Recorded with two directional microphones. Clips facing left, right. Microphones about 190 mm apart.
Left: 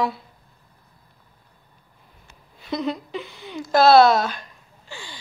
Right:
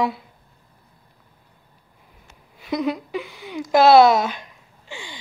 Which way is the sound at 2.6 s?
10° right (ahead or behind).